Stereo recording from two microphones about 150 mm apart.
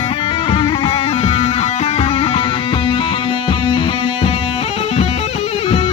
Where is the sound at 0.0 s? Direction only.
40° left (ahead or behind).